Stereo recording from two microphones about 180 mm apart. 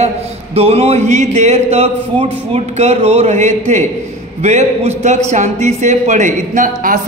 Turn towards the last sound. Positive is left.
turn(degrees=-45)  # may be behind; listen again after turning